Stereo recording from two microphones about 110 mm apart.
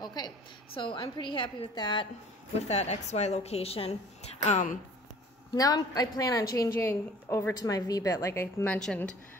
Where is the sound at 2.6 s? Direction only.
80° left.